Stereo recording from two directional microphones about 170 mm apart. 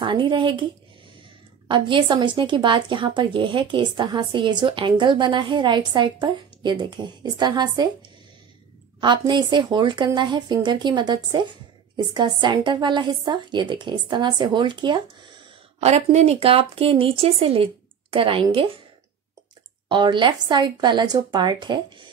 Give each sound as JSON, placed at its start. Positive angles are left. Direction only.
{"t": 0.0, "sound": "speech", "side_deg": -30}
{"t": 1.7, "sound": "speech", "side_deg": -30}
{"t": 9.0, "sound": "speech", "side_deg": -25}
{"t": 15.8, "sound": "speech", "side_deg": -40}
{"t": 19.9, "sound": "speech", "side_deg": -25}